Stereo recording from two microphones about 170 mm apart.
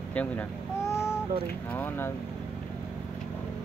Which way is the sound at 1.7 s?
10° left (ahead or behind).